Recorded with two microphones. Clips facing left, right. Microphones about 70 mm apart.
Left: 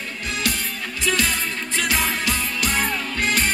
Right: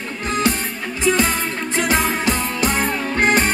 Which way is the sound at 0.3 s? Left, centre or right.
Right.